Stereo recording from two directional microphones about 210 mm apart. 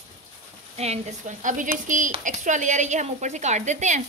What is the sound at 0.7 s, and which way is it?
A woman's voice, 35° right (ahead or behind).